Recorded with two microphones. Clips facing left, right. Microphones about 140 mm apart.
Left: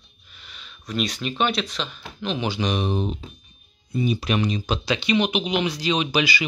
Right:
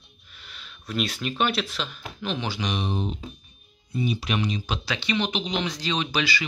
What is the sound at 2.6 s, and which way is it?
Speech, 45° left (ahead or behind).